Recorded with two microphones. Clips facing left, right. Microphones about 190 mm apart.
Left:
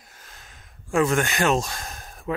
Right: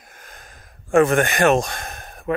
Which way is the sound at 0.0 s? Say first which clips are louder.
Right 5 dB; 50° right (ahead or behind).